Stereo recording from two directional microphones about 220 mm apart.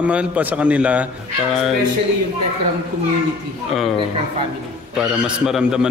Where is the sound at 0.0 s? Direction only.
5° right (ahead or behind).